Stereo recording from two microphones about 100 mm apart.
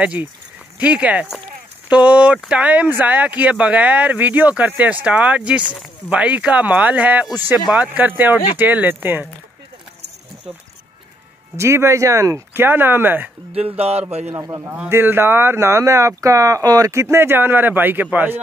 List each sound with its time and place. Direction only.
0.0 s speech: 10° right (ahead or behind)
11.5 s speech: 30° right (ahead or behind)
13.5 s speech: 85° right
14.3 s a man's voice: 35° right (ahead or behind); by 18.4 s 15° right (ahead or behind)